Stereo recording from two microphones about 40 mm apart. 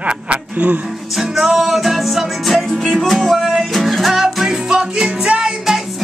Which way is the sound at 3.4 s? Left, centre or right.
Centre.